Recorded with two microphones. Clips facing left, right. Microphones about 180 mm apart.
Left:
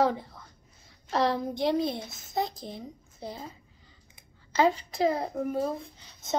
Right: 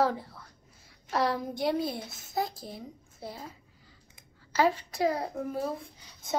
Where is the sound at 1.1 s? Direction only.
25° left (ahead or behind).